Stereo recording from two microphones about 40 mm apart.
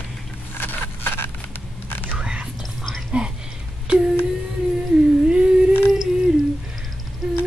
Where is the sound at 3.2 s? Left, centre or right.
Right.